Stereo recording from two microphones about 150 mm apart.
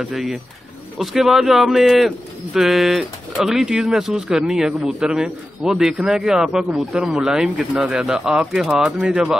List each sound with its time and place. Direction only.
0.0 s speech: centre (ahead or behind)